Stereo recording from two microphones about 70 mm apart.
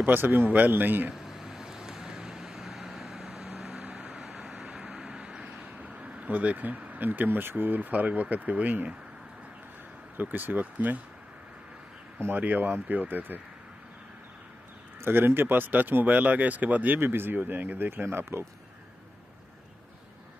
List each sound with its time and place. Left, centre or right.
0.0 s speech: right
1.1 s vehicle: centre
3.7 s vehicle: right
4.2 s vehicle: centre
4.9 s speech: centre
10.1 s speech: right
12.4 s speech: right
15.0 s speech: right